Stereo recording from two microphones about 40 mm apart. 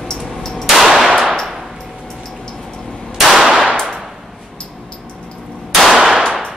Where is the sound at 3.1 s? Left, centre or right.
Centre.